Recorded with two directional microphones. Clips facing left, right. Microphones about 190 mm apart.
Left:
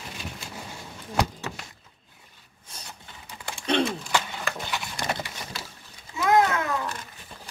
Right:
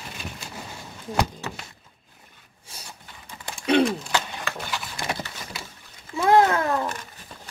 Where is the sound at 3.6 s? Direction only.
10° right (ahead or behind).